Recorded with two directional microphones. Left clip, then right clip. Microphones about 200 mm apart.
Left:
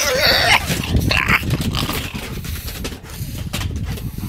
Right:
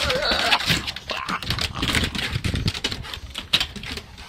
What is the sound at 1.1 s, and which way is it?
Dog, 45° left (ahead or behind).